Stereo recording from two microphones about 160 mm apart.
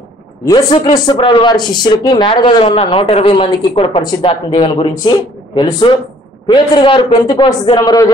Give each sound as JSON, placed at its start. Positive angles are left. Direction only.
{"t": 0.5, "sound": "speech", "side_deg": 30}
{"t": 4.6, "sound": "speech", "side_deg": 40}
{"t": 5.6, "sound": "speech", "side_deg": 25}